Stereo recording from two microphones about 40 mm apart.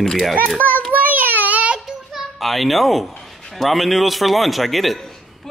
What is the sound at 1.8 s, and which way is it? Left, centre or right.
A child's voice, centre.